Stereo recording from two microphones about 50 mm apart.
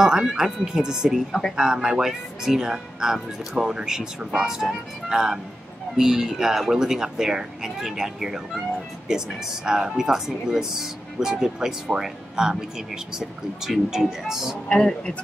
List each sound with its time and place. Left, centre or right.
0.0 s speech: centre
14.7 s speech: centre